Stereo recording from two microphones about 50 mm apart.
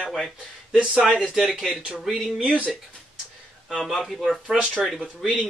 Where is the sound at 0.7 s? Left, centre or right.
Centre.